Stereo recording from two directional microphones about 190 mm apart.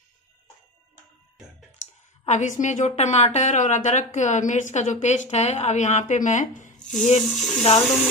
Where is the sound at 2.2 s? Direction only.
40° left (ahead or behind).